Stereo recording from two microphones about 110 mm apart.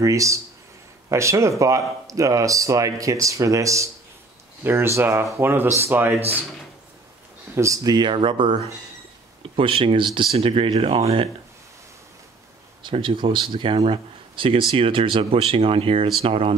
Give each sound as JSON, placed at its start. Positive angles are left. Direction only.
{"t": 0.0, "sound": "speech", "side_deg": -30}
{"t": 7.5, "sound": "speech", "side_deg": -30}
{"t": 12.8, "sound": "speech", "side_deg": -50}